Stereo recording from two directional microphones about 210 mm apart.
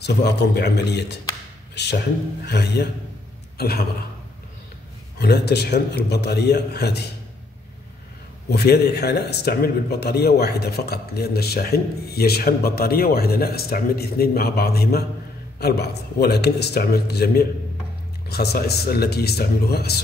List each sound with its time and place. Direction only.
0.0 s speech: 50° left (ahead or behind)
5.2 s speech: 50° left (ahead or behind)
8.5 s speech: 50° left (ahead or behind)